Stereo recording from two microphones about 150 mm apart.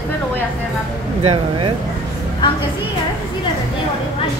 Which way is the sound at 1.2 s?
40° right (ahead or behind).